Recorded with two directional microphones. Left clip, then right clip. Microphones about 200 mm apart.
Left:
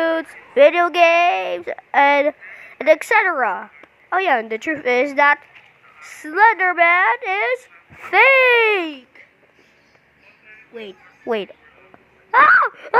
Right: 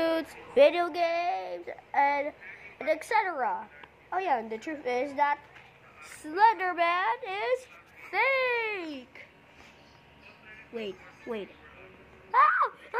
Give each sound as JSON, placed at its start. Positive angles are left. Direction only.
{"t": 0.0, "sound": "a sound", "side_deg": 15}
{"t": 0.6, "sound": "a woman's voice", "side_deg": 25}
{"t": 8.0, "sound": "a woman's voice", "side_deg": 40}
{"t": 10.7, "sound": "speech", "side_deg": 25}
{"t": 12.3, "sound": "speech", "side_deg": 30}